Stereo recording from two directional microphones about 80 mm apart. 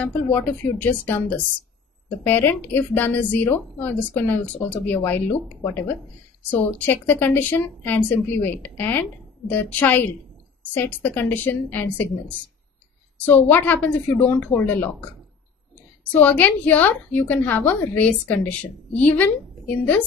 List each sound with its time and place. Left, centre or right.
0.0 s a woman's voice: left
16.1 s a woman's voice: left